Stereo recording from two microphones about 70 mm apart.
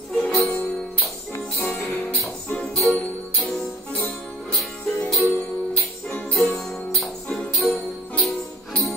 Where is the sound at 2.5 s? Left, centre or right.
Centre.